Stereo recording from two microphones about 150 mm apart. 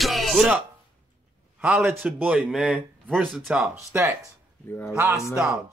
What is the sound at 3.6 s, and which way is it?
Speech, 20° right (ahead or behind).